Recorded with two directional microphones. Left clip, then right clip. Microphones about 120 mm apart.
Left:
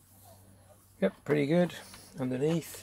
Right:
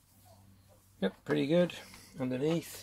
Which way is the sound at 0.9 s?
40° left (ahead or behind).